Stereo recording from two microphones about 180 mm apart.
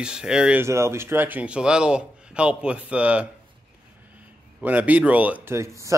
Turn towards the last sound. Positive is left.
turn(degrees=-15)  # may be behind; listen again after turning